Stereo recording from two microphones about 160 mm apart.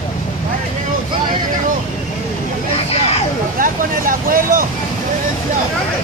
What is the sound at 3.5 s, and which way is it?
Vehicle, 60° right (ahead or behind).